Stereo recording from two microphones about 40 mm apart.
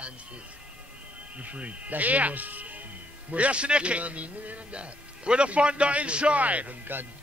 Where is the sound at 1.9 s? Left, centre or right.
Right.